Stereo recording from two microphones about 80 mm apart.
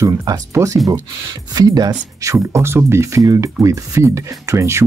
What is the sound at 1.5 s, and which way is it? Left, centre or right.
Speech, right.